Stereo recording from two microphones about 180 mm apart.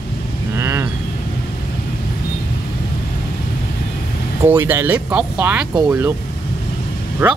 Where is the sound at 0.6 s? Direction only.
15° right (ahead or behind).